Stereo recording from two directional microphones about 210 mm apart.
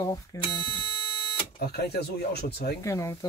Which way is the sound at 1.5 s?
50° left (ahead or behind).